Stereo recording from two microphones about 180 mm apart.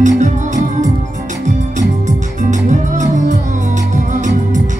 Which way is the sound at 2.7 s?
45° right (ahead or behind).